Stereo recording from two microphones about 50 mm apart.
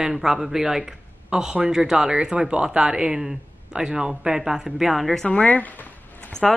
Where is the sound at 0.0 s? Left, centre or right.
Centre.